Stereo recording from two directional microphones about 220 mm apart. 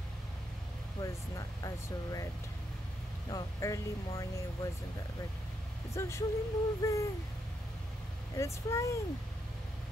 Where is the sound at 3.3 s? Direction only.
15° left (ahead or behind).